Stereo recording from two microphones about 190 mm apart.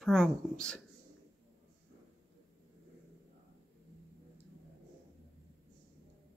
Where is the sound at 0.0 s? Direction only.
Centre (ahead or behind).